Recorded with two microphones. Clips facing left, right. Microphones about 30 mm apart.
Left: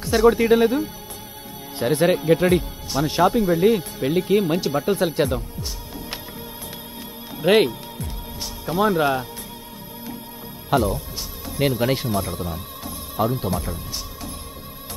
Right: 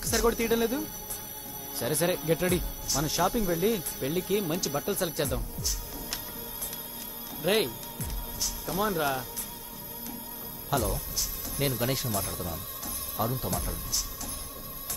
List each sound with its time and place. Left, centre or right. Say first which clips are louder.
0.0 s speech: left 10 dB; left
7.4 s speech: left 10 dB; left
10.7 s speech: left 9 dB; left